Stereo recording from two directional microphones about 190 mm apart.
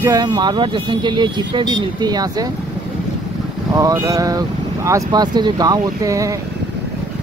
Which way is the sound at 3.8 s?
15° right (ahead or behind).